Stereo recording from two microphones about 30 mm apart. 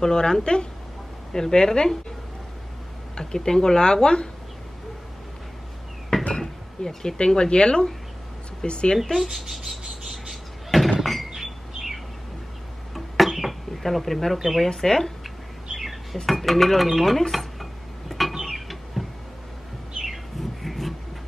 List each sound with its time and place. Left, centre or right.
0.0 s speech: left
3.2 s speech: left
6.3 s a sound: centre
7.2 s speech: left
8.9 s speech: centre
9.2 s a sound: centre
11.0 s door: centre
12.9 s a sound: centre
14.8 s speech: centre
15.8 s cutlery: centre
16.3 s speech: centre
17.3 s a sound: centre
20.1 s bird: centre